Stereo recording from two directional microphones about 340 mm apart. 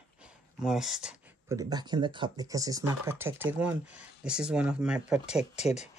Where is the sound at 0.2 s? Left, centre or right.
Centre.